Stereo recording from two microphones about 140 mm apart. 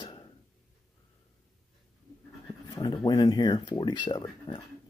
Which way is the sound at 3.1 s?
25° left (ahead or behind).